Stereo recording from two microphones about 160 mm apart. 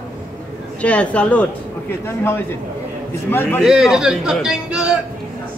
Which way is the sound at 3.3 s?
15° left (ahead or behind).